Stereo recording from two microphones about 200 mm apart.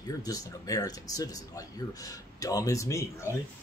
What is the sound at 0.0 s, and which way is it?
Speech, 20° left (ahead or behind).